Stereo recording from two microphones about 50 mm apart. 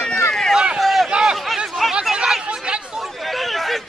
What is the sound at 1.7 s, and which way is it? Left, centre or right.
Chatter, centre.